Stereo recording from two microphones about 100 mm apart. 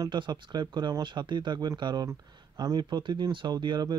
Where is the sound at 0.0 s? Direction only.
50° right (ahead or behind).